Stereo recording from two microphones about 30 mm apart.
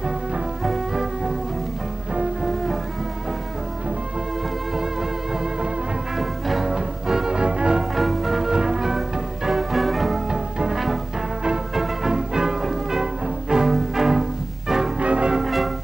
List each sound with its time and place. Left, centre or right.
0.7 s music: centre
5.3 s music: right
6.1 s music: centre
6.6 s music: centre
7.9 s music: centre
8.5 s music: centre
10.3 s music: centre
11.7 s music: centre
12.1 s music: centre
13.7 s music: centre
15.0 s music: right
15.4 s music: centre